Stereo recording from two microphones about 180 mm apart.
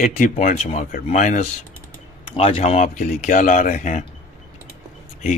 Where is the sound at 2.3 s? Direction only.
35° left (ahead or behind).